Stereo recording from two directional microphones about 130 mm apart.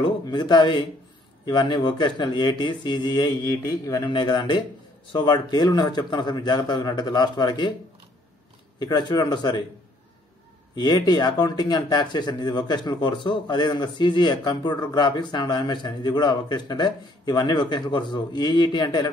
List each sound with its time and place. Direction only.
0.0 s speech: 35° left (ahead or behind)
4.1 s speech: 35° left (ahead or behind)
8.7 s speech: 30° left (ahead or behind)
10.8 s speech: 35° left (ahead or behind)